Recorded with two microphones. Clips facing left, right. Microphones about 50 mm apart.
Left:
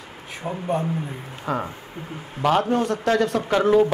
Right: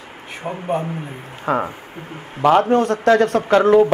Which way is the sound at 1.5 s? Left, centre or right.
Right.